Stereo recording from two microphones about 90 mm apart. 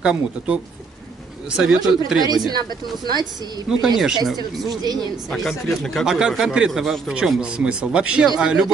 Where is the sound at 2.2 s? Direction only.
45° right (ahead or behind).